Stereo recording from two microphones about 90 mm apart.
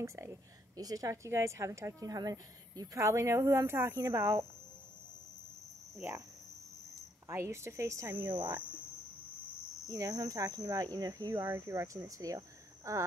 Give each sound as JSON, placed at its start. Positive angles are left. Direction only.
{"t": 0.0, "sound": "a woman's voice", "side_deg": -35}
{"t": 5.9, "sound": "cricket", "side_deg": -25}
{"t": 7.2, "sound": "a woman's voice", "side_deg": -30}
{"t": 8.3, "sound": "speech", "side_deg": -60}
{"t": 9.8, "sound": "speech", "side_deg": -40}
{"t": 11.4, "sound": "speech", "side_deg": -35}